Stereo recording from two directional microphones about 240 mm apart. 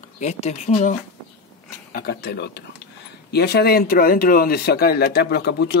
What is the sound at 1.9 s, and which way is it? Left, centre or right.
Speech, left.